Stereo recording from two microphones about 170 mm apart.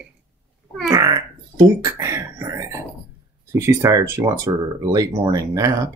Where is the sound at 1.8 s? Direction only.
15° right (ahead or behind).